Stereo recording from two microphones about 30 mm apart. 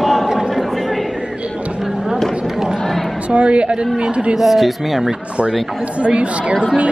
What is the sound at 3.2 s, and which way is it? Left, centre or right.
A woman's voice, right.